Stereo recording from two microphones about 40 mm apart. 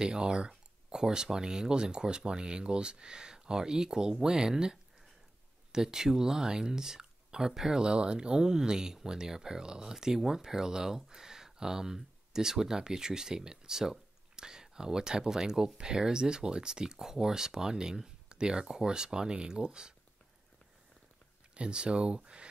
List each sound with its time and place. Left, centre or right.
0.0 s speech: centre
7.8 s speech: right
21.5 s speech: right